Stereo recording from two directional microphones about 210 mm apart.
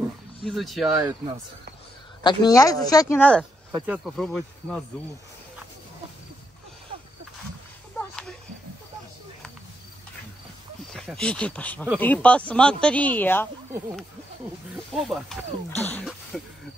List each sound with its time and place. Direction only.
0.5 s speech: centre (ahead or behind)
0.9 s speech: 15° right (ahead or behind)
2.2 s speech: 15° left (ahead or behind); by 4.8 s centre (ahead or behind)
10.9 s speech: centre (ahead or behind)
15.0 s speech: centre (ahead or behind)